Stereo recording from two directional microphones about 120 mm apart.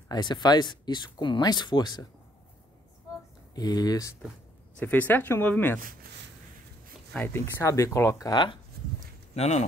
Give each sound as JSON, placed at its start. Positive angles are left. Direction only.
{"t": 0.1, "sound": "speech", "side_deg": 35}
{"t": 3.5, "sound": "speech", "side_deg": 35}
{"t": 4.7, "sound": "speech", "side_deg": 15}
{"t": 7.2, "sound": "speech", "side_deg": 20}
{"t": 8.3, "sound": "speech", "side_deg": 40}
{"t": 9.3, "sound": "speech", "side_deg": 65}